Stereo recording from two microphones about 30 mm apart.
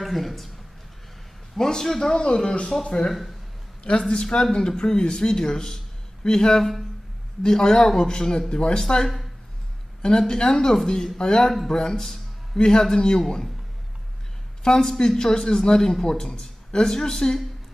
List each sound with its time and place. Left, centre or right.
0.0 s a man's voice: centre
1.6 s a man's voice: centre
2.0 s speech: left
4.1 s speech: left
11.4 s a man's voice: centre
11.7 s speech: left
14.6 s speech: centre